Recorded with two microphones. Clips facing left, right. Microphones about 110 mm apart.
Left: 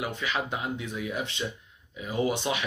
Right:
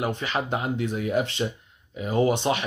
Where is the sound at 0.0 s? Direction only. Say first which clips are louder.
Right 4 dB; 40° right (ahead or behind).